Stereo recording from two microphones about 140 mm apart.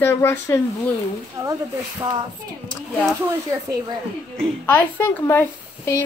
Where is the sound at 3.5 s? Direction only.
25° right (ahead or behind).